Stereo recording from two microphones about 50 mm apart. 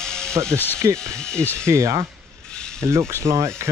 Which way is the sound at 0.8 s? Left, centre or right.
Right.